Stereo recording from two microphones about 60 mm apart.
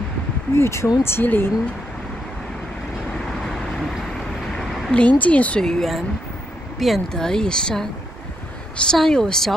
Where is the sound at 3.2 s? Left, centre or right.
Centre.